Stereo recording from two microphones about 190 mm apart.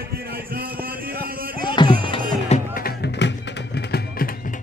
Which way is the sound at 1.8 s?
25° left (ahead or behind).